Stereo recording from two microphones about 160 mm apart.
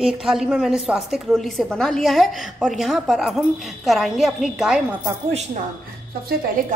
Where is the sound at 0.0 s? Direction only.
5° right (ahead or behind).